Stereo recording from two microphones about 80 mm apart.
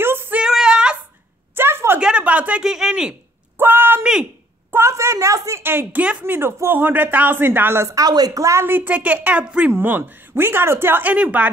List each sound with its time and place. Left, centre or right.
0.0 s female singing: right
0.4 s female singing: centre
1.5 s a sound: right
2.0 s a sound: centre
2.6 s speech: centre
3.5 s a sound: right
4.0 s speech: centre
4.7 s a woman's voice: right
5.6 s speech: right
7.9 s speech: right
8.5 s speech: right; by 9.7 s centre
9.7 s speech: right